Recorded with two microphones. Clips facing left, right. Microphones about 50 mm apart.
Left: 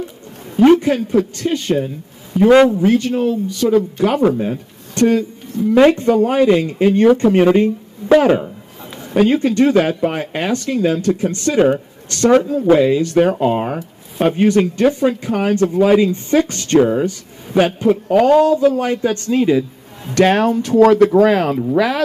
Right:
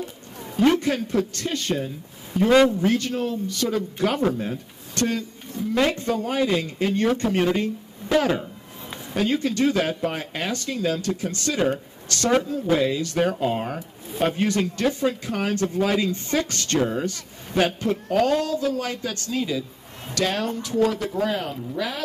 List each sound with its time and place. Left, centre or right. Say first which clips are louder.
0.6 s a man's voice: left 9 dB; left
20.8 s speech: left 13 dB; left